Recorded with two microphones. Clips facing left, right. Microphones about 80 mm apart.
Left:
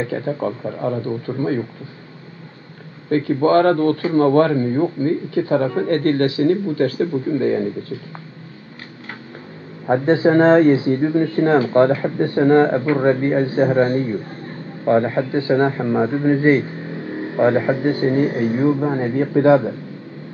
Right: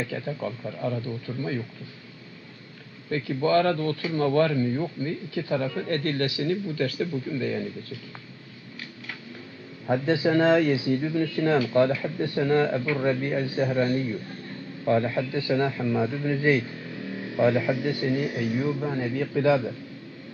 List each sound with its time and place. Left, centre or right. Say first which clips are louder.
0.0 s speech: left 8 dB; left
3.1 s speech: left 8 dB; left
9.8 s speech: left 8 dB; left